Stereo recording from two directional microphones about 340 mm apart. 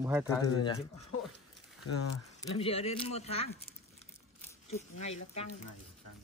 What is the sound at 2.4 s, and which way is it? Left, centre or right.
Speech, centre.